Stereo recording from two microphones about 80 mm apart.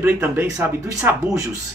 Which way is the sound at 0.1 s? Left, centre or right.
Right.